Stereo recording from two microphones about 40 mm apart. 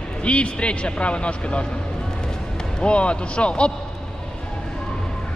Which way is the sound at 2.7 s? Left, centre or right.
Left.